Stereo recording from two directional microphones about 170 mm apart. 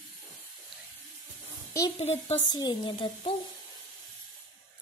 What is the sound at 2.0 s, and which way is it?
Speech, 35° left (ahead or behind).